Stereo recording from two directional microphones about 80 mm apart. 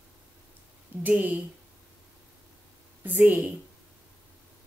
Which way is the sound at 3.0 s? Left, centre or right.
Right.